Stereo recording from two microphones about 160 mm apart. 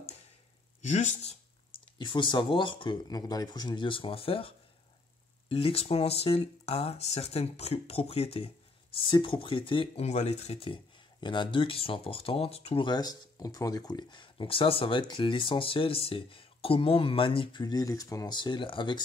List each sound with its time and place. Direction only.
0.8 s speech: 45° left (ahead or behind)
2.0 s speech: 30° left (ahead or behind)